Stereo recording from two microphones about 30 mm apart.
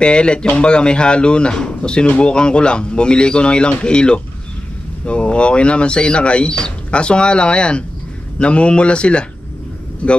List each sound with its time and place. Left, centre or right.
0.0 s speech: left
10.0 s speech: left